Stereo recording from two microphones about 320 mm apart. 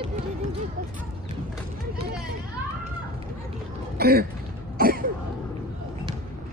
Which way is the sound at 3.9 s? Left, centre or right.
Right.